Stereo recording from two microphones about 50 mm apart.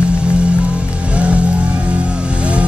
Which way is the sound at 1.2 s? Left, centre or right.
Right.